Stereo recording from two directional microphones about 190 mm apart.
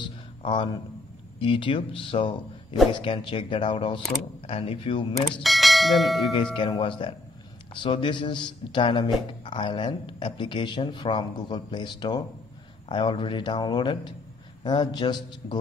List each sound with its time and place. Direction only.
0.0 s a sound: 25° left (ahead or behind)
1.4 s speech: 25° left (ahead or behind)
5.3 s speech: centre (ahead or behind)
6.3 s speech: 25° left (ahead or behind)